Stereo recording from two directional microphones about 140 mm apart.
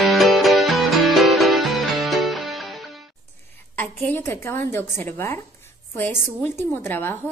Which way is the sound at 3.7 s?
15° left (ahead or behind).